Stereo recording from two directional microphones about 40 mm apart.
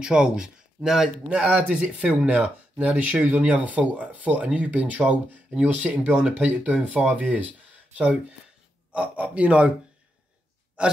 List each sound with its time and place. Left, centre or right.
0.0 s speech: right
1.3 s speech: right
8.9 s speech: right
10.8 s speech: right